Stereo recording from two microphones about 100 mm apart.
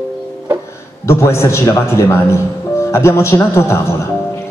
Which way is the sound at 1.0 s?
25° left (ahead or behind).